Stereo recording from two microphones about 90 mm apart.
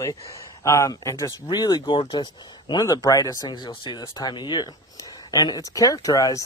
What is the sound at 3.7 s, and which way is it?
Speech, 60° left (ahead or behind).